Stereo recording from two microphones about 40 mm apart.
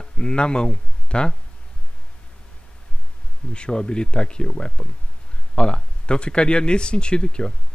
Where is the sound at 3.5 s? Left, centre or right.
Left.